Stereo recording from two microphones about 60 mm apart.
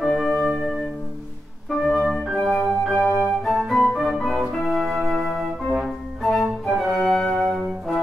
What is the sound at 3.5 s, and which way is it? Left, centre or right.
Music, centre.